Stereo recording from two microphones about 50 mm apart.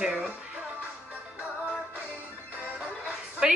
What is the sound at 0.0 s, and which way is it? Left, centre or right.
Music, centre.